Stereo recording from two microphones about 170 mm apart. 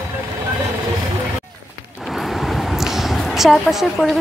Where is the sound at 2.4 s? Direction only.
Centre (ahead or behind).